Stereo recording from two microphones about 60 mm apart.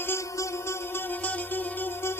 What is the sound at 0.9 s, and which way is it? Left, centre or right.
Music, left.